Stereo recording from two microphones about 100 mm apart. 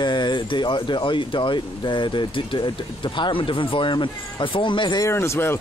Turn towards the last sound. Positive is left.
turn(degrees=25)  # may be behind; listen again after turning